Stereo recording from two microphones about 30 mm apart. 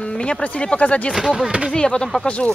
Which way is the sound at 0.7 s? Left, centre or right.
Left.